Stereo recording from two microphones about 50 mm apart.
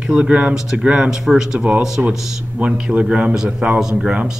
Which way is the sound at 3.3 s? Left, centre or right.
Centre.